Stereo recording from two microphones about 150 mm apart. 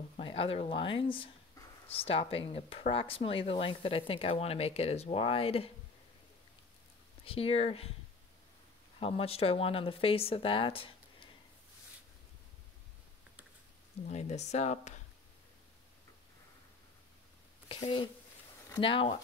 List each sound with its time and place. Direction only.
0.2 s speech: 40° left (ahead or behind)
7.2 s speech: 40° left (ahead or behind)
9.0 s speech: 40° left (ahead or behind)
14.0 s speech: 50° left (ahead or behind)
17.6 s a woman's voice: 35° left (ahead or behind)